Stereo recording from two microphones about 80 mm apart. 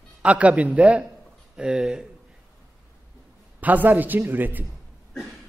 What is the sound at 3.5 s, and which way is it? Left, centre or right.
A man's voice, right.